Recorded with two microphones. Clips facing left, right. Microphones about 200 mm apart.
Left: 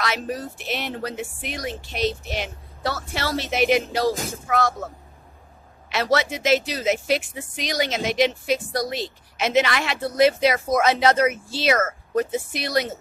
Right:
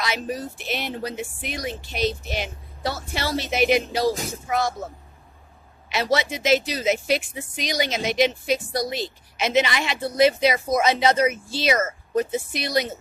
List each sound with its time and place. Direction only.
0.0 s a woman's voice: centre (ahead or behind)
5.9 s a woman's voice: centre (ahead or behind)
11.7 s speech: 15° right (ahead or behind)
12.5 s a woman's voice: 5° left (ahead or behind)